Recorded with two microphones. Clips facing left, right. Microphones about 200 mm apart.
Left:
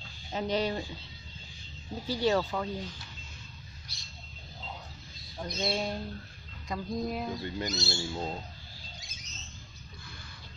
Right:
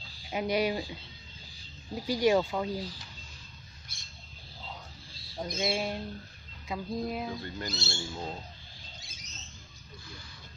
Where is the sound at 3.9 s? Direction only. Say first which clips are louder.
Left 3 dB; 50° right (ahead or behind).